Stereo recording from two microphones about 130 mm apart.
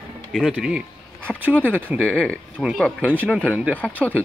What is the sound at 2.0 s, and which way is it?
Speech, 10° left (ahead or behind).